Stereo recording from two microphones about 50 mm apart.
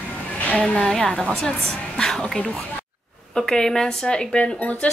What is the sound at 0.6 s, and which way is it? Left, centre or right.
Speech, centre.